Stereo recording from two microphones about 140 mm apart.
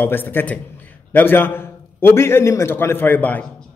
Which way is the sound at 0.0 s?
15° left (ahead or behind).